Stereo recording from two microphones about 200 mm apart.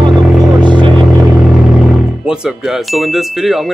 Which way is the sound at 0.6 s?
25° right (ahead or behind).